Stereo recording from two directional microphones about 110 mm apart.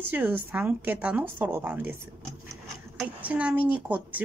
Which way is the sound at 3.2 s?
15° right (ahead or behind).